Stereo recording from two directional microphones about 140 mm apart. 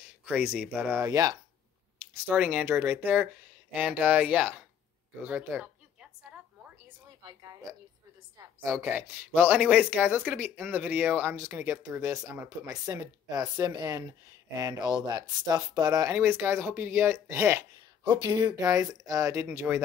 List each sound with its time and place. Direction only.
0.2 s speech: 10° right (ahead or behind)
1.0 s speech: 25° right (ahead or behind)
2.2 s speech: 10° right (ahead or behind)
5.2 s a sound: 10° right (ahead or behind)
8.6 s speech: 15° right (ahead or behind)
18.0 s speech: 35° right (ahead or behind); by 19.8 s 15° right (ahead or behind)